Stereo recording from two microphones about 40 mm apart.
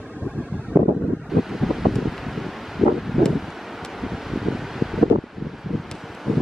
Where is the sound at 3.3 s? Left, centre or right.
Centre.